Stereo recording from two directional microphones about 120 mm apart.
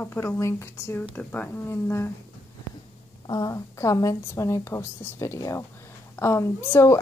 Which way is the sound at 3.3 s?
30° left (ahead or behind).